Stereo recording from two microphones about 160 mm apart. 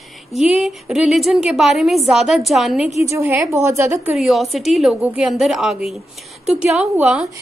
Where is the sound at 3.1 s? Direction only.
15° right (ahead or behind).